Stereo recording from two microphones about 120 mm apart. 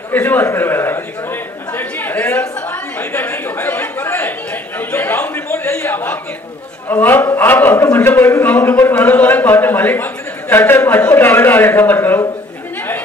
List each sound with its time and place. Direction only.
0.1 s a man's voice: 15° left (ahead or behind)
2.7 s a sound: 15° left (ahead or behind)
6.9 s a man's voice: 15° left (ahead or behind)